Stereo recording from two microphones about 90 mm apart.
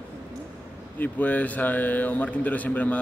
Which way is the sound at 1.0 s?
20° left (ahead or behind).